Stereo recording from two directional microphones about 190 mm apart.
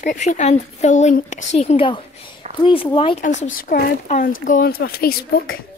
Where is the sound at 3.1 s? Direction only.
40° left (ahead or behind).